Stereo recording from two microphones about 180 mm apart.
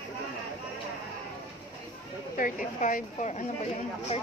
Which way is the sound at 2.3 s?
45° left (ahead or behind).